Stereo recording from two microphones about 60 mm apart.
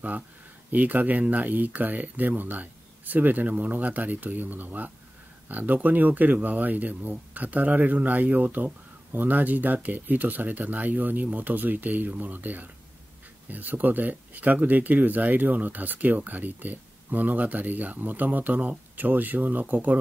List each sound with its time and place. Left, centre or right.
0.7 s speech: right